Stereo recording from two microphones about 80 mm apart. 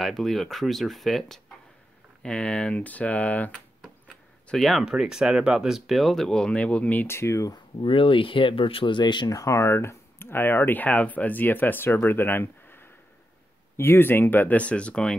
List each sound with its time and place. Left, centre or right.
0.0 s speech: centre
4.5 s speech: centre
7.1 s speech: left
7.5 s speech: left
9.3 s speech: left; by 15.1 s centre